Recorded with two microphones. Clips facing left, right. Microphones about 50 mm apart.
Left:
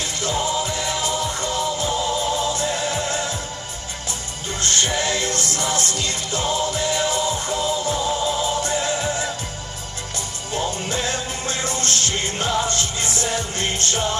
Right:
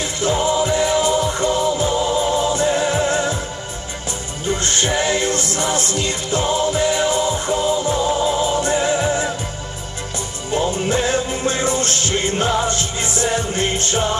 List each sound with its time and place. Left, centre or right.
0.0 s music: centre
4.5 s music: centre
10.5 s music: centre